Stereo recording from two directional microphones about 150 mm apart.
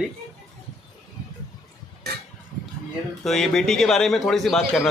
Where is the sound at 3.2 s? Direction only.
Centre (ahead or behind).